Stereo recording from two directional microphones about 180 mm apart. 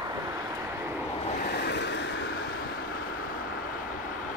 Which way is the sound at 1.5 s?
70° left (ahead or behind).